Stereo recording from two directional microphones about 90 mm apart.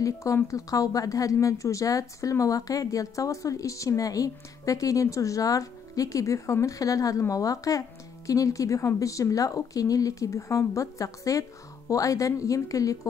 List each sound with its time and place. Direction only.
0.0 s a woman's voice: 35° left (ahead or behind)